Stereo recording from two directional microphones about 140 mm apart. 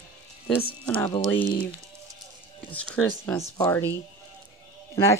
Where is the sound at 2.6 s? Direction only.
15° left (ahead or behind).